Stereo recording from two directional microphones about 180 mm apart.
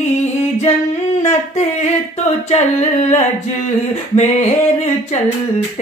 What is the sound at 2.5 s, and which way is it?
Singing, 40° left (ahead or behind).